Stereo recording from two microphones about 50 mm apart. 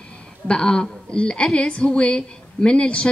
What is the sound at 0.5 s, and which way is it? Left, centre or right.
Speech, centre.